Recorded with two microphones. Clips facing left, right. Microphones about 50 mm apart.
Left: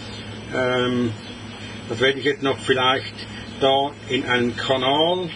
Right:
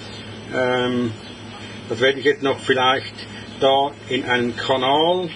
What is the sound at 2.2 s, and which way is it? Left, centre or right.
A man's voice, centre.